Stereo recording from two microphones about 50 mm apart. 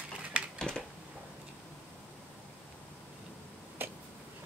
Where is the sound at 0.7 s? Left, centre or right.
Centre.